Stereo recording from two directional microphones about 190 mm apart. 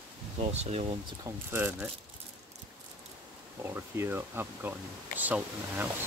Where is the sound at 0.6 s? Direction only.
35° right (ahead or behind).